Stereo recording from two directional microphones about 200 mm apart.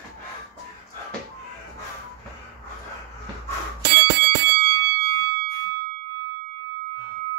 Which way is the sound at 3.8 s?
55° right (ahead or behind).